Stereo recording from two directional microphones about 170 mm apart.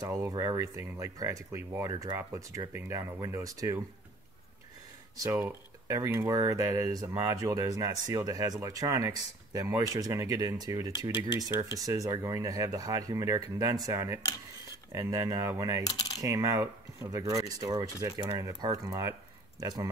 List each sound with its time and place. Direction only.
0.0 s speech: 20° right (ahead or behind)
5.1 s speech: 15° right (ahead or behind)